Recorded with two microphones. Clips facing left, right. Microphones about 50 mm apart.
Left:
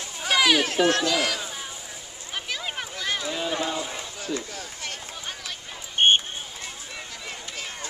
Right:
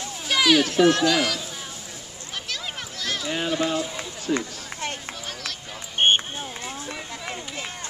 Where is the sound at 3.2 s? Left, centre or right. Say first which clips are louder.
Right 6 dB; right.